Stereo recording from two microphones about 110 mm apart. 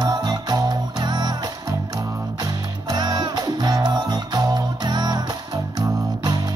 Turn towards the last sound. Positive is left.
turn(degrees=-40)  # may be behind; listen again after turning